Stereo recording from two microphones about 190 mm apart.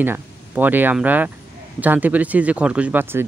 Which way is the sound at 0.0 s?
10° right (ahead or behind).